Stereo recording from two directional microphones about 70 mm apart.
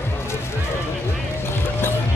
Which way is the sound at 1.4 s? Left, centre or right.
Left.